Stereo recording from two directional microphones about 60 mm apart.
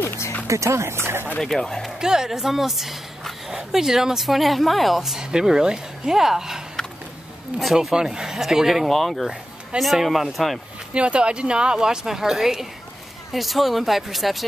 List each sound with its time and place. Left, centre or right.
0.5 s speech: right
1.4 s speech: centre
2.0 s speech: centre
10.9 s speech: centre